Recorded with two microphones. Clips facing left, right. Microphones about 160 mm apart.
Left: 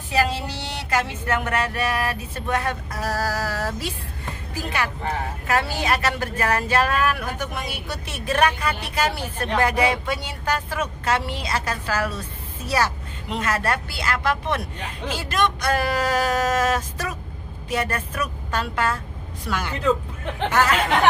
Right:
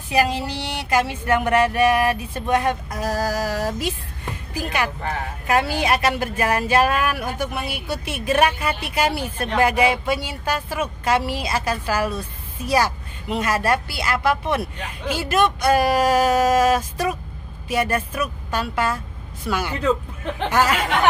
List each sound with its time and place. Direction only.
0.1 s a woman's voice: 15° right (ahead or behind)
20.5 s a woman's voice: 10° right (ahead or behind)